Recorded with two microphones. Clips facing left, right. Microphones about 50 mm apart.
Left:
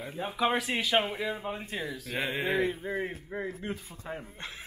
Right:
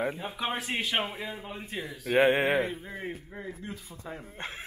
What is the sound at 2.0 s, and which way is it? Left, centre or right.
Mantra, right.